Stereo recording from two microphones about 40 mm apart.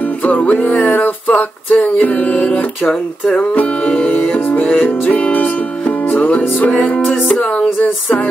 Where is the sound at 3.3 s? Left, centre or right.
Left.